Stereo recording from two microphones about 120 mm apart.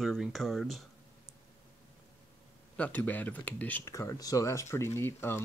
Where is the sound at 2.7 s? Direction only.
10° left (ahead or behind).